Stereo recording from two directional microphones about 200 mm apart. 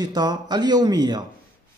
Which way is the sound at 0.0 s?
20° right (ahead or behind).